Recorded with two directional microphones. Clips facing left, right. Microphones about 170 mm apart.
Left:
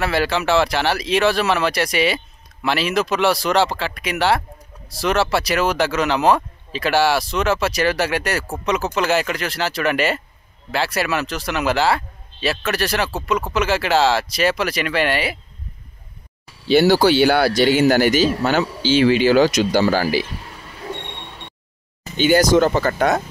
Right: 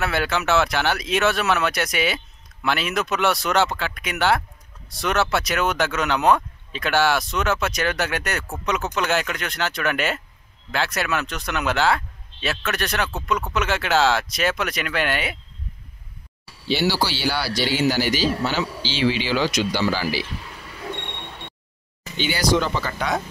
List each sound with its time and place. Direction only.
0.0 s speech: centre (ahead or behind)
16.6 s speech: 50° left (ahead or behind)
22.1 s speech: 45° left (ahead or behind)